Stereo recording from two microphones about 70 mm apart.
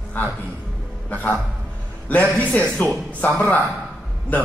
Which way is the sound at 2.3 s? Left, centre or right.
Centre.